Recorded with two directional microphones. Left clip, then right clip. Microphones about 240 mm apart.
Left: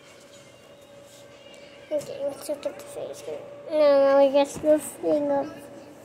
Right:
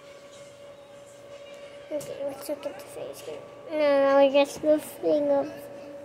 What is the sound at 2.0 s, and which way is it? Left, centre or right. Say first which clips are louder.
Music: left 2 dB; centre.